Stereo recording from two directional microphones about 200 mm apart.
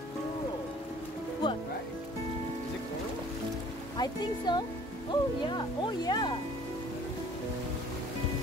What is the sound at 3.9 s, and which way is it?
Speech, 20° left (ahead or behind).